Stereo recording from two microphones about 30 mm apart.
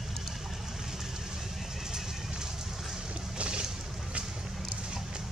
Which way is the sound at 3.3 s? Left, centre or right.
Right.